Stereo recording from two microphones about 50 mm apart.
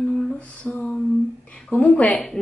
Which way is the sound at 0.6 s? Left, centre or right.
Centre.